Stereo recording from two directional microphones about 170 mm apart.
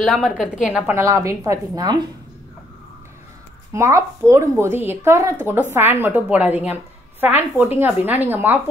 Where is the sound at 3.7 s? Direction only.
15° right (ahead or behind).